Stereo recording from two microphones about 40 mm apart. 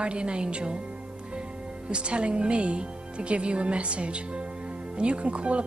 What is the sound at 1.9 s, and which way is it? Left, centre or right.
Speech, right.